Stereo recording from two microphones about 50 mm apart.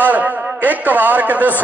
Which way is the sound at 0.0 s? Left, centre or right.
Right.